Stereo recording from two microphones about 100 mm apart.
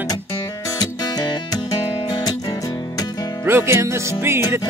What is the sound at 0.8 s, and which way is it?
Music, 40° left (ahead or behind).